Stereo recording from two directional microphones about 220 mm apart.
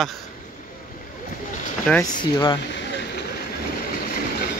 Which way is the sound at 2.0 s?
20° left (ahead or behind).